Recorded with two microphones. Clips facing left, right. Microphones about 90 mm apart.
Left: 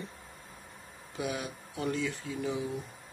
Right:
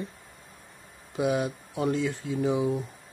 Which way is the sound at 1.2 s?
40° right (ahead or behind).